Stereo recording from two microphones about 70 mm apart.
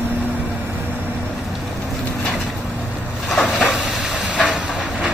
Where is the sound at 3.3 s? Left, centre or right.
Centre.